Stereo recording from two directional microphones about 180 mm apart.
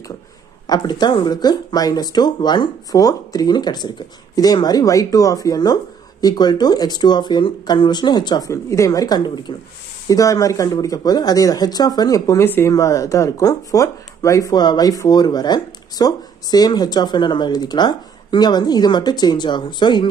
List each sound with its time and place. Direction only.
0.7 s speech: 25° left (ahead or behind)